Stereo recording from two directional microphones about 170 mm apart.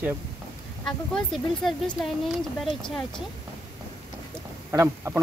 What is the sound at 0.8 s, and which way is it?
Speech, centre (ahead or behind).